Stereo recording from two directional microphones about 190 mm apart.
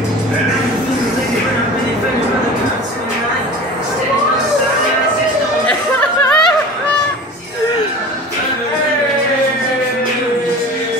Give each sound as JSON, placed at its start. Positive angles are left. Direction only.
{"t": 5.7, "sound": "chatter", "side_deg": 5}